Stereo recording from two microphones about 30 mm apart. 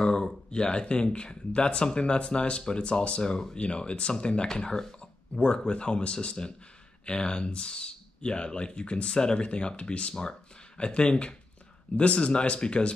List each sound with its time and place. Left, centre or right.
0.0 s a sound: left
0.5 s speech: left
3.2 s speech: left